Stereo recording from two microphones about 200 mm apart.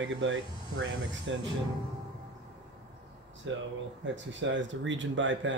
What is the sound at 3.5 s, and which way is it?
Speech, 70° right (ahead or behind).